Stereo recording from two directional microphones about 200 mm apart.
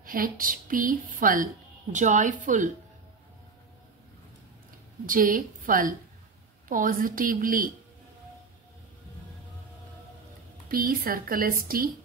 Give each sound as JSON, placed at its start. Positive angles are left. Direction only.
{"t": 0.0, "sound": "a woman's voice", "side_deg": -45}
{"t": 5.0, "sound": "a woman's voice", "side_deg": -45}
{"t": 10.7, "sound": "a woman's voice", "side_deg": -45}